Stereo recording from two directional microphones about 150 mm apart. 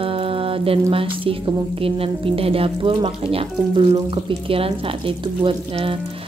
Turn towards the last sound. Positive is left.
turn(degrees=-35)  # may be behind; listen again after turning